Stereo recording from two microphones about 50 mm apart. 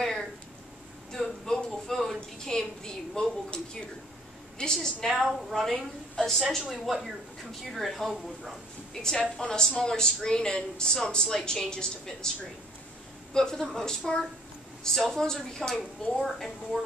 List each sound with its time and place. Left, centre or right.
0.0 s a sound: centre
2.1 s a woman's voice: centre
9.0 s a woman's voice: centre
13.3 s a woman's voice: centre